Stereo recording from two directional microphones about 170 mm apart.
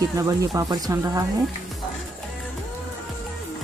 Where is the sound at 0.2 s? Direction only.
20° right (ahead or behind).